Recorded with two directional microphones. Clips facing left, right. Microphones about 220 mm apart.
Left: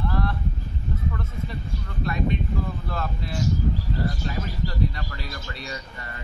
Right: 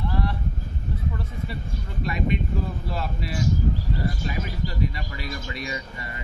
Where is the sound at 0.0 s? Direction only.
15° right (ahead or behind).